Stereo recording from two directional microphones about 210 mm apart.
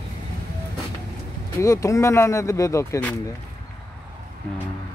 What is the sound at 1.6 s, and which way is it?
Speech, 15° left (ahead or behind).